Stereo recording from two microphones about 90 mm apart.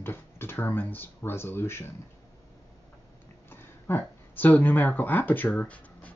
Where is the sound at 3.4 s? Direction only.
25° left (ahead or behind).